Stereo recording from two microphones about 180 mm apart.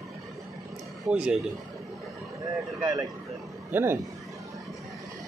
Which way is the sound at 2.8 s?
20° right (ahead or behind).